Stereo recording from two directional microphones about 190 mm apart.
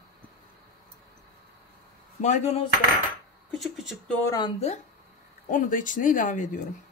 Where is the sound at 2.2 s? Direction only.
35° left (ahead or behind).